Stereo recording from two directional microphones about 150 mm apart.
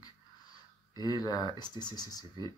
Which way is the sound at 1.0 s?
25° left (ahead or behind).